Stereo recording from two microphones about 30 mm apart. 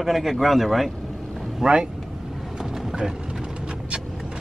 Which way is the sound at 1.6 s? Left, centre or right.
Right.